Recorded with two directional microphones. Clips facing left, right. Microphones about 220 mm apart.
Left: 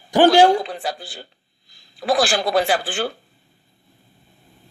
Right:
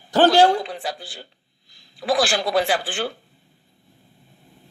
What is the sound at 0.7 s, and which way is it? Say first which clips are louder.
A woman's voice: left 2 dB; 40° left (ahead or behind).